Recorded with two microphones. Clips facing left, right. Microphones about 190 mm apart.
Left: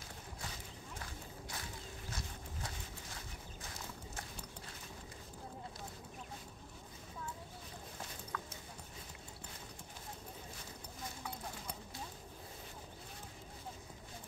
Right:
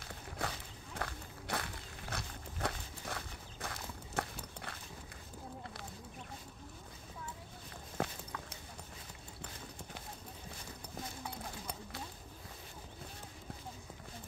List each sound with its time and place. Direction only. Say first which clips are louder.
0.4 s walk: right 10 dB; 70° right (ahead or behind)
8.0 s dog: right 14 dB; 70° right (ahead or behind)